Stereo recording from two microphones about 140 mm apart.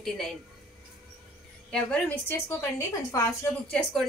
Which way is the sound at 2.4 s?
20° left (ahead or behind).